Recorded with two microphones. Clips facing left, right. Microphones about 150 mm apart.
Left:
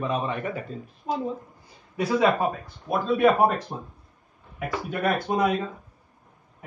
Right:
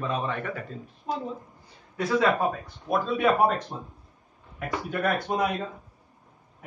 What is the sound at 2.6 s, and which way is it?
Speech, centre (ahead or behind).